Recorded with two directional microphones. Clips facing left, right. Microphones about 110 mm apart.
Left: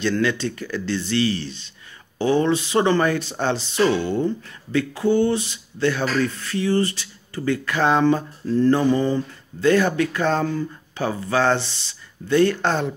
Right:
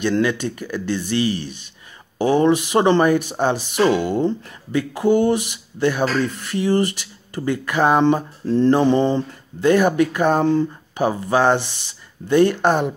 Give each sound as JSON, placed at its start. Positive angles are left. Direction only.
{"t": 0.0, "sound": "speech", "side_deg": -15}